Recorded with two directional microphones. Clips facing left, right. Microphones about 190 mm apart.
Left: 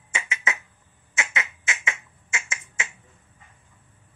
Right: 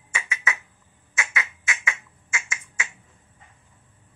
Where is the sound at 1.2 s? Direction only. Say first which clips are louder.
Even; 25° left (ahead or behind).